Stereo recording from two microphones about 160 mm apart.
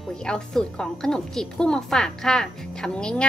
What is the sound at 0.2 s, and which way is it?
A woman's voice, 5° left (ahead or behind).